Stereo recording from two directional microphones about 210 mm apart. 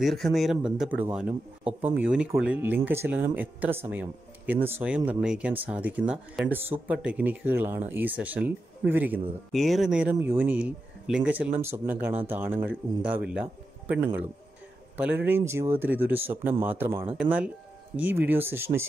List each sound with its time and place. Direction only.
0.0 s speech: centre (ahead or behind)